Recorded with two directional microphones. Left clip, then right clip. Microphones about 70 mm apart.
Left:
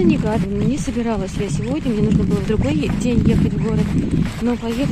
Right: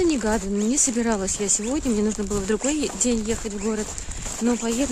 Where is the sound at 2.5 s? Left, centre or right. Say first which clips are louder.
Left 2 dB; right.